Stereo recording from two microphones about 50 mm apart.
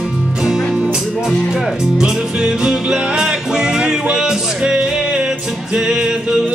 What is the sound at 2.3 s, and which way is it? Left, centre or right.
Music, centre.